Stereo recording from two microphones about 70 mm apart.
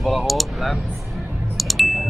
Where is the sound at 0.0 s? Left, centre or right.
Centre.